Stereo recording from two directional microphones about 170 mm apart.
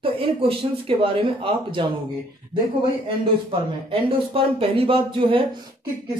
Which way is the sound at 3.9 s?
35° right (ahead or behind).